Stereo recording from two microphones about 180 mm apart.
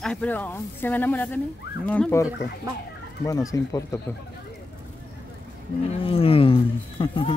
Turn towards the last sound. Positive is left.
turn(degrees=30)  # may be behind; listen again after turning